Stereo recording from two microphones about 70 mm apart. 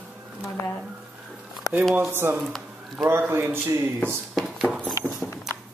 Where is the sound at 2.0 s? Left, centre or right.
Right.